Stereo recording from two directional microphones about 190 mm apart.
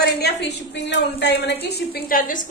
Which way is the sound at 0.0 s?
60° left (ahead or behind).